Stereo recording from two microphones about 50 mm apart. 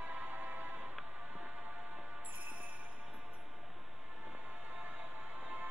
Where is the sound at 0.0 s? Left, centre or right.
Right.